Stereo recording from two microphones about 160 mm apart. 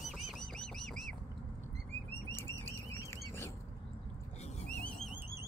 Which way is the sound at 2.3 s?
15° left (ahead or behind).